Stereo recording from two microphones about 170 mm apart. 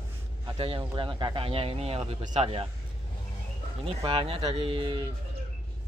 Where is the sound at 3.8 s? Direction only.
35° right (ahead or behind).